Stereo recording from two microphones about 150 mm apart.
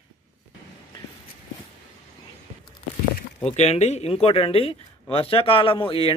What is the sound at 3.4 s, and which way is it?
A man's voice, 45° left (ahead or behind).